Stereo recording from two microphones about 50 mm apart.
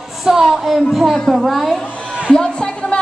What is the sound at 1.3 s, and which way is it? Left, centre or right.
Speech, centre.